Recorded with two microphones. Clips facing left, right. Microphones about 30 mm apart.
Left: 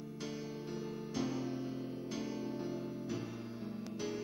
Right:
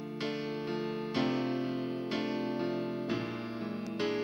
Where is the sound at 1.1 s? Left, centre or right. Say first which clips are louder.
Right 6 dB; right.